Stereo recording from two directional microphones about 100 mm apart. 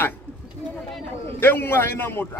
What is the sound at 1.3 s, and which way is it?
A man's voice, 20° left (ahead or behind).